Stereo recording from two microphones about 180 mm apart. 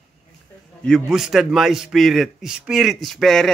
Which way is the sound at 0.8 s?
Centre (ahead or behind).